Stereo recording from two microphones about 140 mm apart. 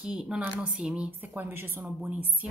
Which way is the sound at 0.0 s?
5° right (ahead or behind).